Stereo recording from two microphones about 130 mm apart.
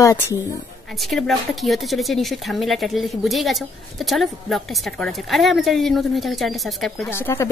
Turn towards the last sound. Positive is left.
turn(degrees=20)  # may be behind; listen again after turning